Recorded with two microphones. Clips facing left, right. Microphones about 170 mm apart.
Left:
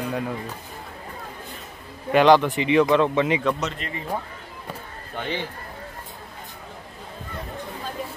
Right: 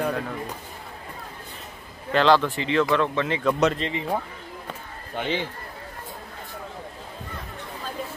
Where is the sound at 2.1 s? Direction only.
15° left (ahead or behind).